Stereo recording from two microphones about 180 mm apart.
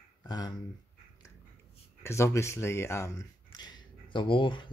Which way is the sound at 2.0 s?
15° left (ahead or behind).